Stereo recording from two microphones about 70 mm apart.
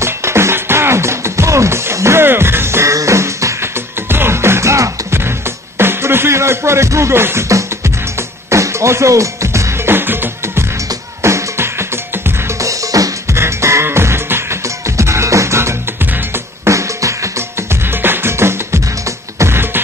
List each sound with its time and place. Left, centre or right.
0.0 s music: right
4.1 s music: right
12.5 s music: right
13.3 s music: right
18.0 s music: right